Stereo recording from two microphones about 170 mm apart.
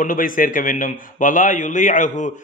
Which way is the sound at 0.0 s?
50° left (ahead or behind).